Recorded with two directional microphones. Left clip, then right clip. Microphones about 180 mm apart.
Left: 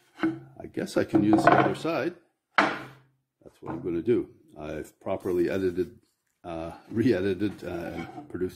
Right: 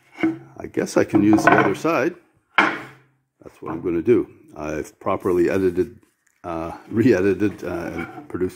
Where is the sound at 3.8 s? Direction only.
10° right (ahead or behind).